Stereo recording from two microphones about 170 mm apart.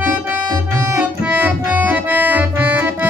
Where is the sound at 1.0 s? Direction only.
10° right (ahead or behind).